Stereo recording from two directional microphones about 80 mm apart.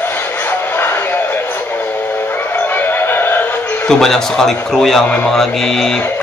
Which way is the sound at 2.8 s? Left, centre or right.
Left.